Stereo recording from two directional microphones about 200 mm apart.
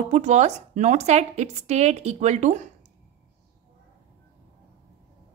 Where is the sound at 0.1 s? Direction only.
35° right (ahead or behind).